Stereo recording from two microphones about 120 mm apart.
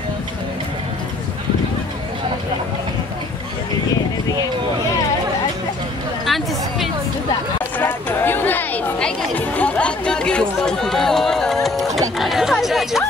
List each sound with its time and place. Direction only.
6.2 s a sound: centre (ahead or behind)
7.8 s chatter: 20° left (ahead or behind)
9.6 s run: 10° left (ahead or behind)
12.2 s chatter: centre (ahead or behind)